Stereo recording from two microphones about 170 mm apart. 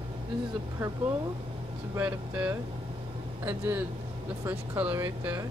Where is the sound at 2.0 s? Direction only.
10° right (ahead or behind).